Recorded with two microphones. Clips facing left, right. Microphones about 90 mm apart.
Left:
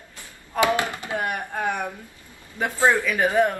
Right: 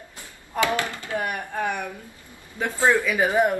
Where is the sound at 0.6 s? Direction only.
20° left (ahead or behind).